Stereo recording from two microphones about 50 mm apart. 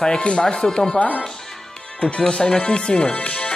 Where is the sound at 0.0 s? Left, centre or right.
Centre.